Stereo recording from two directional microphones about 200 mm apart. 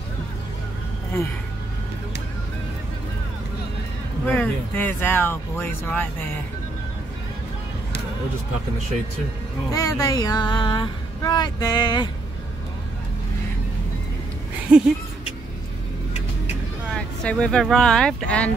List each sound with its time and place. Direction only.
4.3 s speech: 10° left (ahead or behind)
9.7 s speech: 20° left (ahead or behind)
14.7 s speech: 5° right (ahead or behind)
16.9 s speech: 5° left (ahead or behind)